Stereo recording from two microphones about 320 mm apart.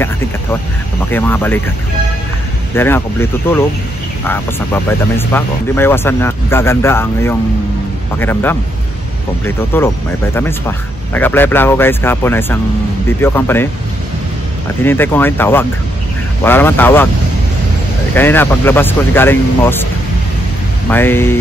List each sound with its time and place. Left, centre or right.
1.1 s speech: centre
2.7 s speech: centre
5.1 s speech: centre
9.7 s speech: centre
11.1 s speech: centre
14.8 s speech: centre
18.1 s speech: centre
20.9 s speech: centre